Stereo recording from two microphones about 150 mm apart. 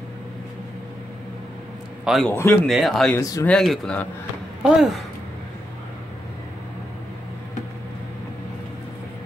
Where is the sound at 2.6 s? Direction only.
Centre (ahead or behind).